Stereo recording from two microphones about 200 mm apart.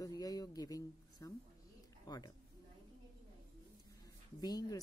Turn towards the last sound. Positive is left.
turn(degrees=20)  # may be behind; listen again after turning